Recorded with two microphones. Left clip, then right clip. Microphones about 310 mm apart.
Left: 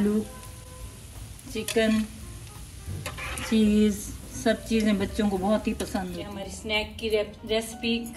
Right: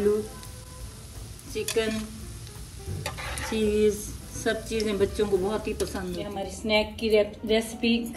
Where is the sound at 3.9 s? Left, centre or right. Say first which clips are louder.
Right 5 dB; left.